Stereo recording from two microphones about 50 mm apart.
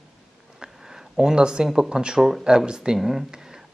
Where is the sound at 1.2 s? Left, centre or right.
Centre.